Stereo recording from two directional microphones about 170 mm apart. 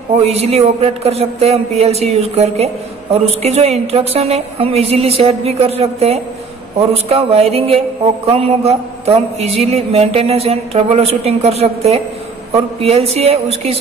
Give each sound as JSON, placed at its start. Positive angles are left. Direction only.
{"t": 0.2, "sound": "a man's voice", "side_deg": -40}